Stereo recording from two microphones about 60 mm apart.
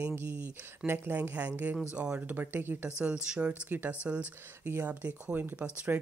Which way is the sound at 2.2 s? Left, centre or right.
Right.